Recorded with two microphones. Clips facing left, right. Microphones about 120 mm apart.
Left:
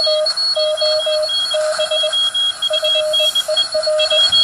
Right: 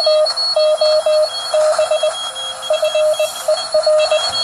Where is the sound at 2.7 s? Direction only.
40° right (ahead or behind).